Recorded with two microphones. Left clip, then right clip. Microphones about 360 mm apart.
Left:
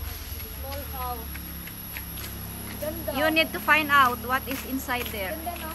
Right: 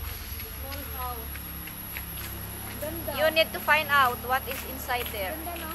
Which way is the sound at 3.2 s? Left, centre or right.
Centre.